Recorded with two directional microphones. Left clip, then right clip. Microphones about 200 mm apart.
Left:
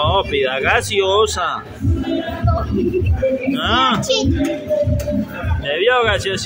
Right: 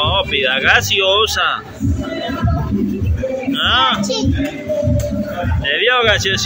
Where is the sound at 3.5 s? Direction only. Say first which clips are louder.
Right 5 dB; 30° left (ahead or behind).